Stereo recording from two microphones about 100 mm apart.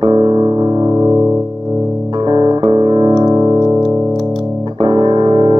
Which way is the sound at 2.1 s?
50° right (ahead or behind).